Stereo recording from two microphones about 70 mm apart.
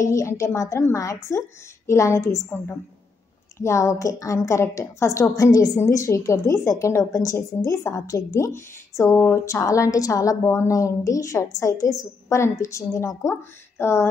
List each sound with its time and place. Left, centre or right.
0.0 s a woman's voice: left
3.5 s a woman's voice: left
5.8 s a woman's voice: left